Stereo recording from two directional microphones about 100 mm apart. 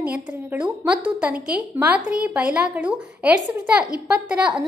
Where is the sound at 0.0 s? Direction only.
15° right (ahead or behind).